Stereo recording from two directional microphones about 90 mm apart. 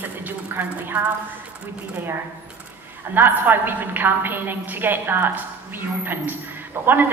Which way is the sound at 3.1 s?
25° right (ahead or behind).